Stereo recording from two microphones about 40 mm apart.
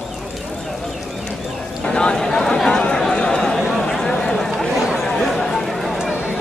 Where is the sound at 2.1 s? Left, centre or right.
Centre.